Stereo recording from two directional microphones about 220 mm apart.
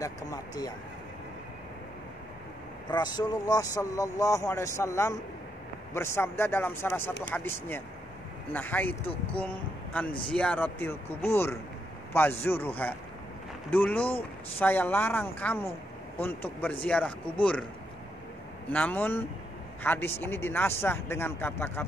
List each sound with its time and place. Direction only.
0.0 s speech: 15° left (ahead or behind)
2.9 s speech: 20° left (ahead or behind)
8.5 s speech: 10° left (ahead or behind)
10.3 s speech: 5° left (ahead or behind)
18.7 s speech: 5° left (ahead or behind)